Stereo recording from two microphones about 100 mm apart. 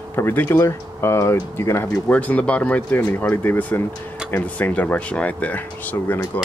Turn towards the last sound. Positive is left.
turn(degrees=20)  # may be behind; listen again after turning